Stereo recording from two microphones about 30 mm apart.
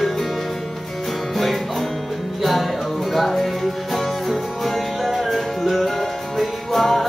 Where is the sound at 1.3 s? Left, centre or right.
Centre.